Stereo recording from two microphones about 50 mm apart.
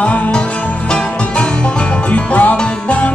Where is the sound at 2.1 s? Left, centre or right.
Left.